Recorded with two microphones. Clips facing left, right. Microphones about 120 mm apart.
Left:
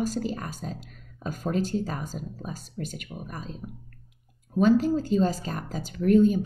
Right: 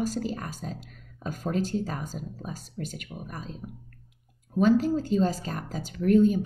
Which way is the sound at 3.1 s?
35° left (ahead or behind).